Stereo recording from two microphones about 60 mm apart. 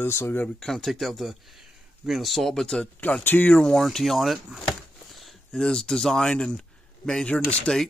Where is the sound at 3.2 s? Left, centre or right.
Left.